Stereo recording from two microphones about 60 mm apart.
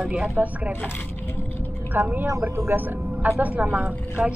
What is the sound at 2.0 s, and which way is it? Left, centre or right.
A woman's voice, right.